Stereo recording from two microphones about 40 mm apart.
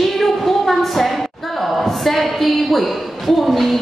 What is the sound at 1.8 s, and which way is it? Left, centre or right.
A woman's voice, centre.